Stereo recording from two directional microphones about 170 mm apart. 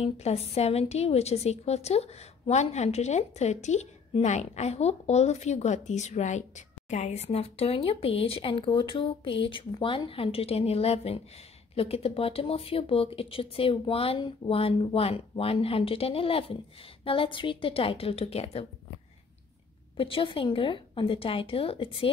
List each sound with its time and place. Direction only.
0.0 s a woman's voice: 35° left (ahead or behind)
20.0 s a woman's voice: 30° left (ahead or behind)